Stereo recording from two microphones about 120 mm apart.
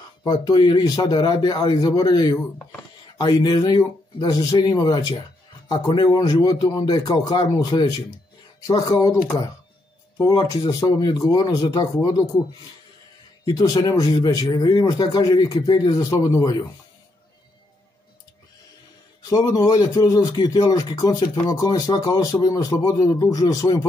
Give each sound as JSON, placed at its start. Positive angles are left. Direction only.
{"t": 0.2, "sound": "a man's voice", "side_deg": 40}
{"t": 13.5, "sound": "a man's voice", "side_deg": 30}
{"t": 19.2, "sound": "a man's voice", "side_deg": 30}